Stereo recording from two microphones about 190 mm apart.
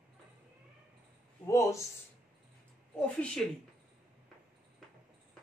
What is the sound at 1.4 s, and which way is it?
Speech, 15° left (ahead or behind).